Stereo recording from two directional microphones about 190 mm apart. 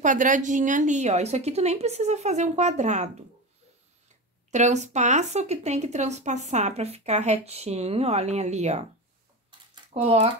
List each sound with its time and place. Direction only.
0.0 s speech: 45° right (ahead or behind)
4.5 s speech: 35° right (ahead or behind)
9.5 s a sound: 30° right (ahead or behind)